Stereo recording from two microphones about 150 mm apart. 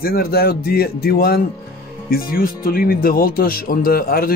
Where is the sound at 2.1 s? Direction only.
80° left.